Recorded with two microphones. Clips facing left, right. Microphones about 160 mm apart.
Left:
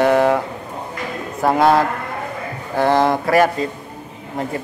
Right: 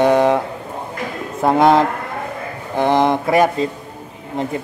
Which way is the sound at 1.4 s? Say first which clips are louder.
Right 2 dB; 20° right (ahead or behind).